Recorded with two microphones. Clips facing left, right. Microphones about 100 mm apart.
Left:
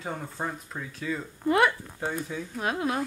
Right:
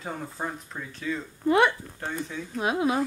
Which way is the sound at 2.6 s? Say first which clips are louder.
Right 4 dB; 10° right (ahead or behind).